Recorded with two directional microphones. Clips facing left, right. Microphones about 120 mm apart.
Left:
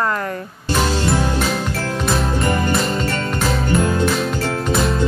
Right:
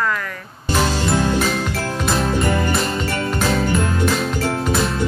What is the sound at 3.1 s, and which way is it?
Music, centre (ahead or behind).